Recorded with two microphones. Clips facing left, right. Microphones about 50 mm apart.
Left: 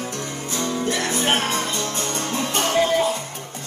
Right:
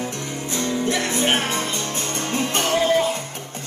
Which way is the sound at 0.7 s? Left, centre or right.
Right.